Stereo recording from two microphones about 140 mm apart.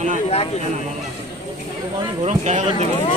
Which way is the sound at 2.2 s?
55° right (ahead or behind).